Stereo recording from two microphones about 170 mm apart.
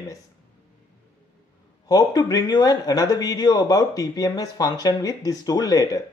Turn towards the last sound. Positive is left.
turn(degrees=20)  # may be behind; listen again after turning